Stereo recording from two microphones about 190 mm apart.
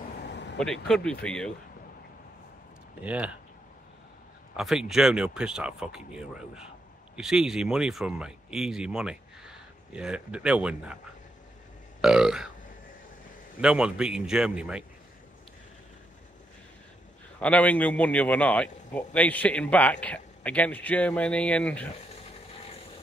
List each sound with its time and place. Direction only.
0.2 s vehicle: 65° left (ahead or behind)
0.6 s speech: 5° left (ahead or behind)
3.0 s speech: 5° right (ahead or behind)
4.6 s speech: centre (ahead or behind)
12.0 s speech: 5° right (ahead or behind)
13.6 s speech: 5° right (ahead or behind)
17.4 s a man's voice: 5° left (ahead or behind)